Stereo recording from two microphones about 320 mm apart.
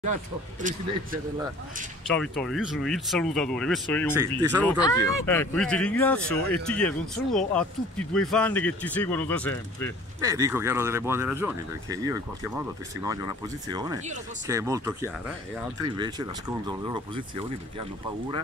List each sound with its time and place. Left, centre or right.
0.0 s speech: right
2.1 s speech: centre
10.2 s speech: centre